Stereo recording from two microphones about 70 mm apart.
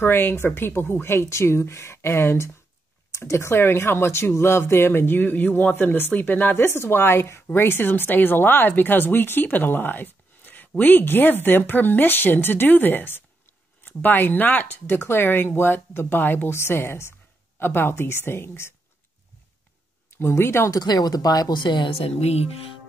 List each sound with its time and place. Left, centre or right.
0.0 s speech: left
20.2 s speech: left
20.7 s speech: left